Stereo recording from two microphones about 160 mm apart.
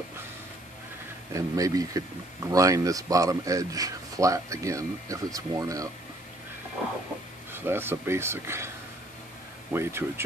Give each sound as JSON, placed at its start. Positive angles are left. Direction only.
{"t": 1.3, "sound": "speech", "side_deg": -20}
{"t": 7.5, "sound": "speech", "side_deg": -15}